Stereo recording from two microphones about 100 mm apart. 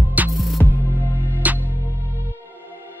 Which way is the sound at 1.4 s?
15° right (ahead or behind).